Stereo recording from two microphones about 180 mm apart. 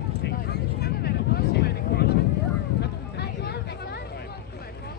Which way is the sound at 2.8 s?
65° left (ahead or behind).